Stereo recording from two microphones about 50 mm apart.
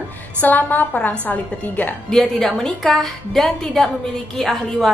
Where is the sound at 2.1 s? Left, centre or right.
Centre.